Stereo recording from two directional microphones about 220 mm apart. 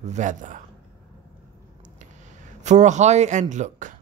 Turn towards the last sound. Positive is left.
turn(degrees=-35)  # may be behind; listen again after turning